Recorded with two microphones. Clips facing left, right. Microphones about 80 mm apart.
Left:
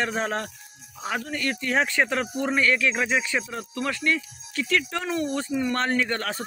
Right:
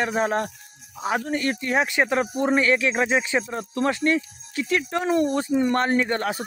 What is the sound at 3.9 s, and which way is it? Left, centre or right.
Speech, right.